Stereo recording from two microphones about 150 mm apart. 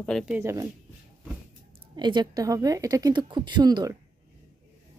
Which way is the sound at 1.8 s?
30° right (ahead or behind).